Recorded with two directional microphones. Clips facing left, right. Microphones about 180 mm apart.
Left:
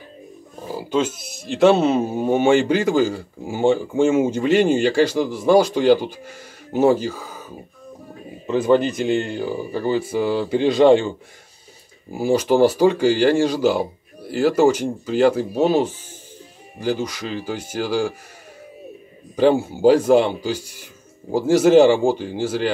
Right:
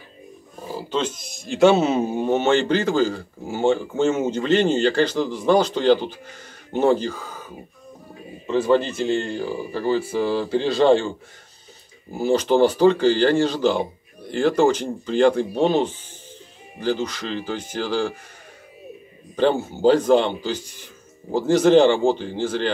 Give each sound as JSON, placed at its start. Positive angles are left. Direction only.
{"t": 0.7, "sound": "speech", "side_deg": 10}
{"t": 8.5, "sound": "speech", "side_deg": 15}
{"t": 19.3, "sound": "speech", "side_deg": 10}